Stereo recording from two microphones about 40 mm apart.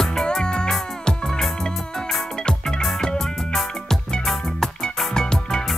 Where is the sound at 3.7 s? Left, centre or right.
Centre.